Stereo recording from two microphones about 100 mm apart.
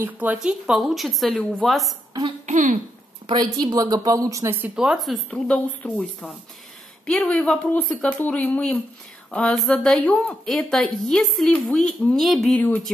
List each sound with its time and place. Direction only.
0.0 s speech: 15° right (ahead or behind); by 2.0 s centre (ahead or behind)
3.3 s a woman's voice: 45° right (ahead or behind)
4.7 s speech: 5° right (ahead or behind)
5.3 s speech: 10° left (ahead or behind)
7.1 s speech: 10° left (ahead or behind)
12.5 s speech: 15° left (ahead or behind)